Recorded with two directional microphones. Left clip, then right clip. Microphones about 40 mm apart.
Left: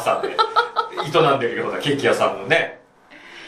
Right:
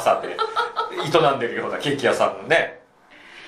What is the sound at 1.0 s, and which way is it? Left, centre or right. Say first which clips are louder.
Speech: left 1 dB; right.